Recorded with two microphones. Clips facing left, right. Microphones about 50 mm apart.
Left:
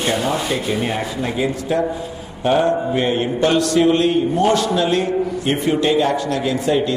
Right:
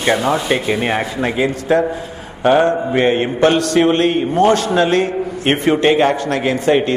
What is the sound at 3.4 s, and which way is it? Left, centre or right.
A man's voice, right.